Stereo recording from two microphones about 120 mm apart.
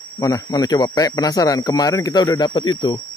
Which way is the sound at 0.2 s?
30° left (ahead or behind).